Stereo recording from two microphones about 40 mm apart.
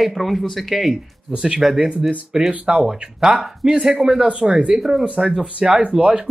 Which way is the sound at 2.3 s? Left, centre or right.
Centre.